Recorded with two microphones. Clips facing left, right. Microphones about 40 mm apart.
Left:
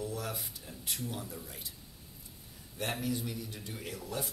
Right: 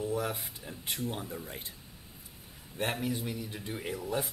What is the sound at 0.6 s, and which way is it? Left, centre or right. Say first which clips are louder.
Speech: right 3 dB; right.